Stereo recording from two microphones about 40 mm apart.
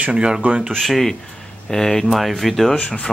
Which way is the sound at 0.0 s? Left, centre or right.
Right.